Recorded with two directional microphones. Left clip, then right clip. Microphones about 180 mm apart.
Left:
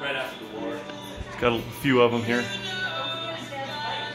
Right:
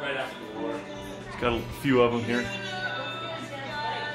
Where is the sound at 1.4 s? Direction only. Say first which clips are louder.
Left 4 dB; 40° left (ahead or behind).